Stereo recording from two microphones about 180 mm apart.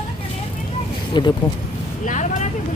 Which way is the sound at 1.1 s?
25° left (ahead or behind).